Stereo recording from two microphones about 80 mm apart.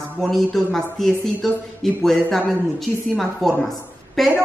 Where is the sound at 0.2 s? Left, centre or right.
Centre.